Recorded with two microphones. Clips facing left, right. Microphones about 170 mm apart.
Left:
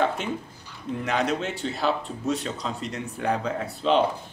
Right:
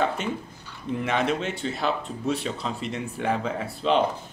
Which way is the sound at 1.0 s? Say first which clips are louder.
Even; 5° right (ahead or behind).